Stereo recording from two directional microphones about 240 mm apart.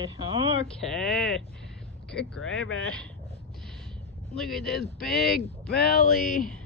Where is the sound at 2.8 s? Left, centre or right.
Centre.